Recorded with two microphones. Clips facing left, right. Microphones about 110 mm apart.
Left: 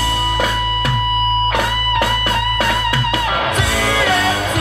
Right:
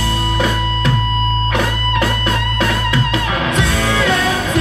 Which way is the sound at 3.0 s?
25° left (ahead or behind).